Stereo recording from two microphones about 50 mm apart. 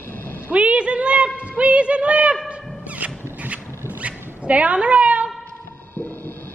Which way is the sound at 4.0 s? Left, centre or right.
Right.